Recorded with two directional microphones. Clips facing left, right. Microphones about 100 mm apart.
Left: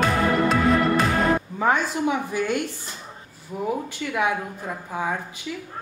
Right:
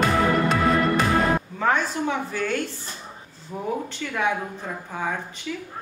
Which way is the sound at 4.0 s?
10° left (ahead or behind).